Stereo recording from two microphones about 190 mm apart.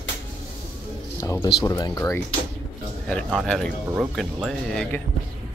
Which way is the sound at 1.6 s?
20° left (ahead or behind).